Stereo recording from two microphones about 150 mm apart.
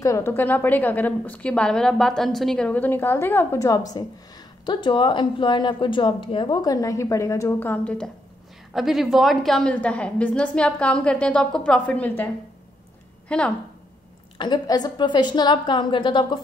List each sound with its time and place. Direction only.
0.0 s a woman's voice: 20° left (ahead or behind)
13.3 s a woman's voice: 5° left (ahead or behind)
14.4 s a woman's voice: 30° left (ahead or behind)